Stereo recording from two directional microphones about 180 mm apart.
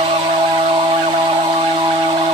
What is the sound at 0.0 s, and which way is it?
Music, 30° right (ahead or behind).